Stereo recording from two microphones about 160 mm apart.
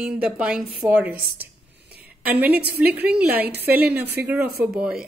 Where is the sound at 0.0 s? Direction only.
5° right (ahead or behind).